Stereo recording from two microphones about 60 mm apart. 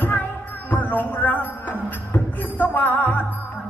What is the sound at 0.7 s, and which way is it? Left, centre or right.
Speech, left.